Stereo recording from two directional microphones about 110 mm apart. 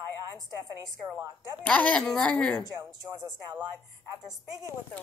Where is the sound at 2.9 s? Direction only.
40° right (ahead or behind).